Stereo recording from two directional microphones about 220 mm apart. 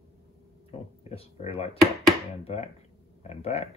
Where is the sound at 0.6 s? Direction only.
25° left (ahead or behind).